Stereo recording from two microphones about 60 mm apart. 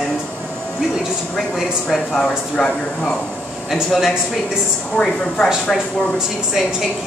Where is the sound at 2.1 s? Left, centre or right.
Centre.